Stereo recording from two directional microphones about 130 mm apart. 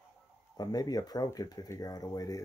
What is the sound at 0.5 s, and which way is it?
Speech, 30° left (ahead or behind).